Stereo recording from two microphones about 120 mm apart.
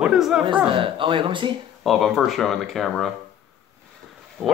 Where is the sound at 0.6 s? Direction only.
45° right (ahead or behind).